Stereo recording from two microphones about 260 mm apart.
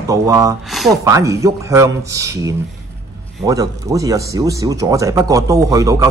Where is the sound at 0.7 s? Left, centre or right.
Centre.